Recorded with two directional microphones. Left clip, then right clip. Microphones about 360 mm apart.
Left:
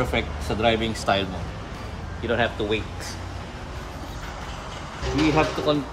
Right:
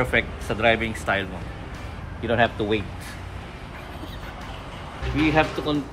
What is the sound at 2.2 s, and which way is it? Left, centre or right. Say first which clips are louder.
Speech: right 2 dB; centre.